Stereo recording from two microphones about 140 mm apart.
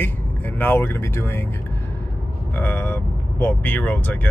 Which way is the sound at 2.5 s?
15° left (ahead or behind).